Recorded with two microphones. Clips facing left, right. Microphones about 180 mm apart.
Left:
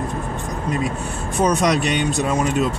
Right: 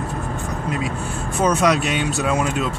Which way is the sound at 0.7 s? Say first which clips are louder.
Left 3 dB; 5° right (ahead or behind).